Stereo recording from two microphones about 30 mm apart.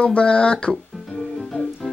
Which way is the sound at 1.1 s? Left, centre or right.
Centre.